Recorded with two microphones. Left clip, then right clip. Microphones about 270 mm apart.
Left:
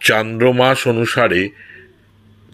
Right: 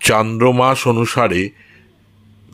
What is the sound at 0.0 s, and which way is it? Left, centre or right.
Speech, right.